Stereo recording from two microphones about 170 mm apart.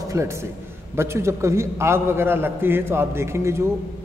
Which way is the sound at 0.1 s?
15° right (ahead or behind).